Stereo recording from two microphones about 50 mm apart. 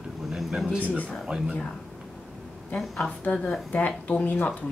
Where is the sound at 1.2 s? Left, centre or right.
Centre.